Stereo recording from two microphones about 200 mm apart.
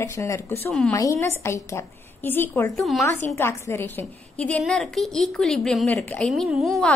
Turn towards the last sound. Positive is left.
turn(degrees=0)  # may be behind; listen again after turning